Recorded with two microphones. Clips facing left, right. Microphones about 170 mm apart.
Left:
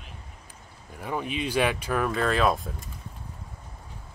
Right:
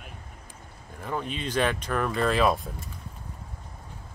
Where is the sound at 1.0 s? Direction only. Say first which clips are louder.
Left 2 dB; 10° left (ahead or behind).